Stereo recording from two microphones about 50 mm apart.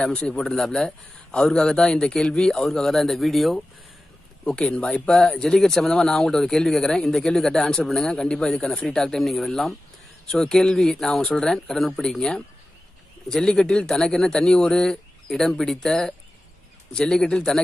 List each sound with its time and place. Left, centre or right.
0.2 s speech: centre
4.5 s speech: centre